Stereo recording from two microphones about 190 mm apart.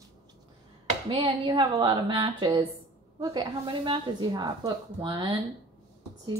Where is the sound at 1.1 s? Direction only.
25° right (ahead or behind).